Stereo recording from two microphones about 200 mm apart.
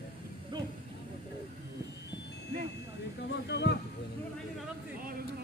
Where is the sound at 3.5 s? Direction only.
60° left (ahead or behind).